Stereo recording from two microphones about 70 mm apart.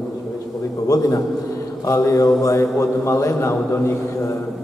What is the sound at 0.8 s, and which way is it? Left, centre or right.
A man's voice, left.